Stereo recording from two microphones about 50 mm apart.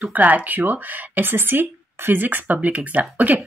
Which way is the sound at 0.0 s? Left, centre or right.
Right.